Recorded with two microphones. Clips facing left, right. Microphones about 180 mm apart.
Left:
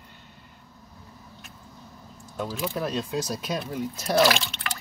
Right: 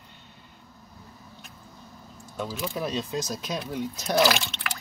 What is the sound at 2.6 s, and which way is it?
Speech, centre (ahead or behind).